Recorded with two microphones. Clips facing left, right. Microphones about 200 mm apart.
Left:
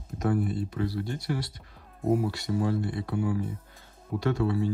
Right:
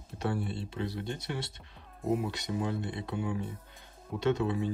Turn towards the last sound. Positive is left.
turn(degrees=-20)  # may be behind; listen again after turning